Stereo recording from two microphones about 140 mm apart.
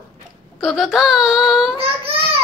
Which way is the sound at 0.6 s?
5° right (ahead or behind).